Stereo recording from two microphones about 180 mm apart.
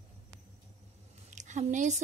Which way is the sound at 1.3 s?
45° right (ahead or behind).